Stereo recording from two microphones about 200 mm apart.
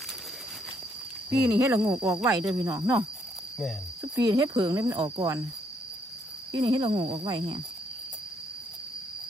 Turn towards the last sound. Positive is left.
turn(degrees=-25)  # may be behind; listen again after turning